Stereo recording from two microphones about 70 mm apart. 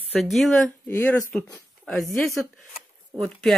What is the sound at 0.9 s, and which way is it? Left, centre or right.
Speech, left.